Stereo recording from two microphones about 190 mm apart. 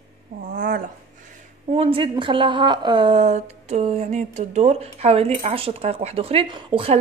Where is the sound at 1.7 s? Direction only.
30° right (ahead or behind).